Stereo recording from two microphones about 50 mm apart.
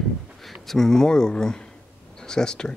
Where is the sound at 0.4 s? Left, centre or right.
Centre.